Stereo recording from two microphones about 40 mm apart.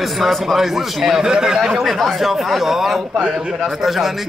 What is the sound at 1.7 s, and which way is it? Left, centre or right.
A man's voice, centre.